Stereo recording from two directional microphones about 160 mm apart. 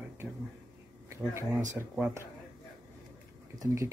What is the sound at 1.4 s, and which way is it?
Speech, 15° right (ahead or behind).